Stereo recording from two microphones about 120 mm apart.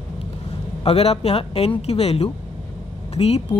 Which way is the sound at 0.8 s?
55° left (ahead or behind).